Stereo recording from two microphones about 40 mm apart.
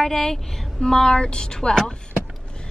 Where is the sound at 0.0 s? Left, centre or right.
Centre.